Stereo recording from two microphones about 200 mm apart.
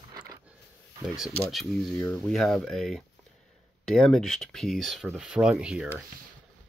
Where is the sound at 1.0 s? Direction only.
5° right (ahead or behind).